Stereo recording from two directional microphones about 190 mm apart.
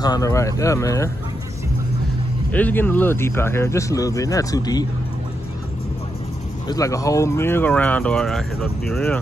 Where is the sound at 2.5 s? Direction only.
10° left (ahead or behind).